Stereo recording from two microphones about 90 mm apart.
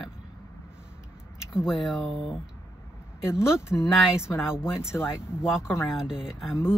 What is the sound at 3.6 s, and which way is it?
Speech, 30° left (ahead or behind).